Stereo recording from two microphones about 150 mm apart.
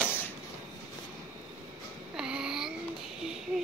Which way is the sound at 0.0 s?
10° left (ahead or behind).